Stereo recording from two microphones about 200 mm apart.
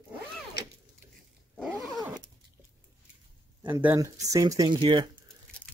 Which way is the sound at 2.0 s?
20° right (ahead or behind).